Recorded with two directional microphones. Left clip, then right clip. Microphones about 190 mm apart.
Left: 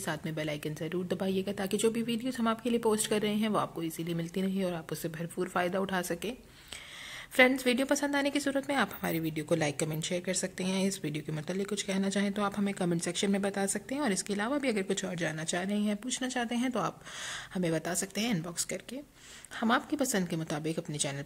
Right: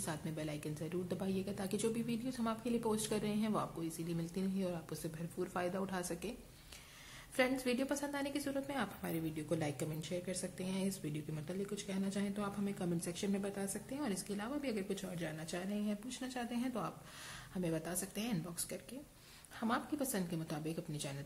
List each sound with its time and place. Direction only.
0.0 s speech: 30° left (ahead or behind)
7.3 s a woman's voice: 40° left (ahead or behind)